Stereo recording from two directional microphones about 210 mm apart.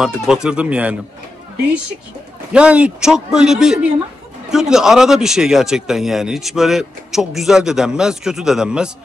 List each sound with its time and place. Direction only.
0.0 s speech: 5° right (ahead or behind)
2.5 s speech: 5° right (ahead or behind)